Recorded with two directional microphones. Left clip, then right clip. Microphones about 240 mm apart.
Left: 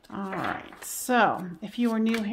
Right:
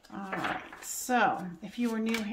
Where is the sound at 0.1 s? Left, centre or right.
Left.